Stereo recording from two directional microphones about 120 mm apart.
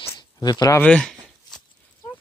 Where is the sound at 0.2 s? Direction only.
35° left (ahead or behind).